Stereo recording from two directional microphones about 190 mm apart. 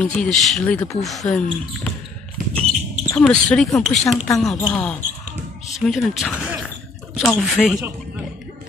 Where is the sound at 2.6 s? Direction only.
35° right (ahead or behind).